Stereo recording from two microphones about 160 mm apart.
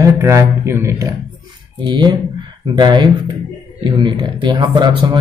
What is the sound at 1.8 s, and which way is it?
A man's voice, 30° right (ahead or behind).